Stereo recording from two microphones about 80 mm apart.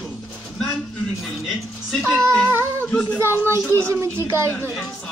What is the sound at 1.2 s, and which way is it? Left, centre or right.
Speech, centre.